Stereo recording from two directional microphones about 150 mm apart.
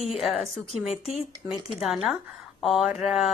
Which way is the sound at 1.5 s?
Centre (ahead or behind).